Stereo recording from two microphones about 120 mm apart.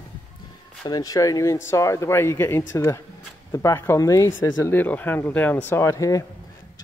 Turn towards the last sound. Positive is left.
turn(degrees=25)  # may be behind; listen again after turning